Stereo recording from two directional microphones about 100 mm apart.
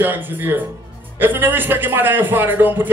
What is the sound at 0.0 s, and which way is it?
A man's voice, 20° right (ahead or behind).